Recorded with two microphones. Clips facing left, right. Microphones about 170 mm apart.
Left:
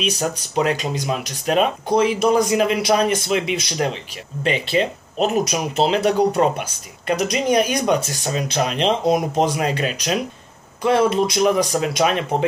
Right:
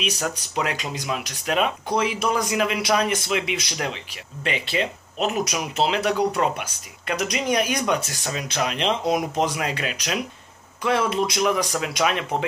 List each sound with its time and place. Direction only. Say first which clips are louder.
0.0 s speech: left 4 dB; 35° left (ahead or behind)